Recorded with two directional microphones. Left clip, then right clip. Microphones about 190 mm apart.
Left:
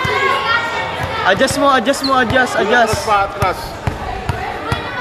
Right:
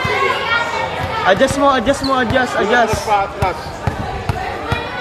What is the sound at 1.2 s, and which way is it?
Speech, centre (ahead or behind).